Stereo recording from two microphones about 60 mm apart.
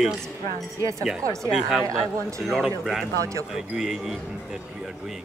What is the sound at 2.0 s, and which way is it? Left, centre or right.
Speech, centre.